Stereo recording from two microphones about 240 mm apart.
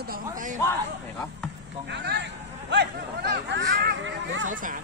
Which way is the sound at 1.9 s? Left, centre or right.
Right.